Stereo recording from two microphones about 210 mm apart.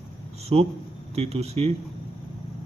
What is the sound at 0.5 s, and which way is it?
Speech, 30° right (ahead or behind).